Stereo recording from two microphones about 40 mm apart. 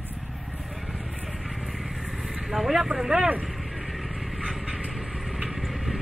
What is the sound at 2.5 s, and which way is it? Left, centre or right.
Speech, centre.